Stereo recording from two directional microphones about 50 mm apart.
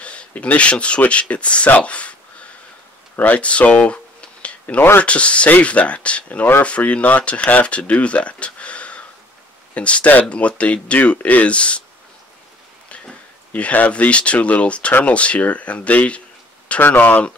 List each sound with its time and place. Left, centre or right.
0.0 s speech: left
3.2 s a sound: left
4.7 s speech: left
5.0 s speech: left
13.5 s speech: left